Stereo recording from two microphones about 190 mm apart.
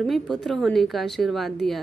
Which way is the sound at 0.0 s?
Centre (ahead or behind).